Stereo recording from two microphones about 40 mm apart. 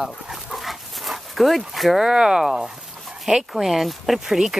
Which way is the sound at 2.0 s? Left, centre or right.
Centre.